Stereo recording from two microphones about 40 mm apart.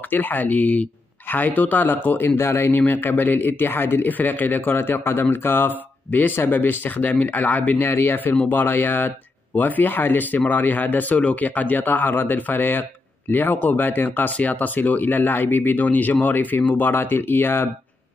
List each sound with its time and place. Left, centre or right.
0.1 s speech: left
3.0 s speech: left
4.1 s speech: left
7.7 s speech: left
8.5 s speech: left
9.6 s speech: left
14.3 s speech: left